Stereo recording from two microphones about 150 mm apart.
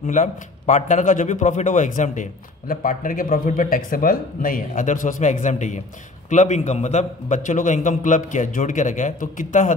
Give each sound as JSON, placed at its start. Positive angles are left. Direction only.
{"t": 0.0, "sound": "a man's voice", "side_deg": 55}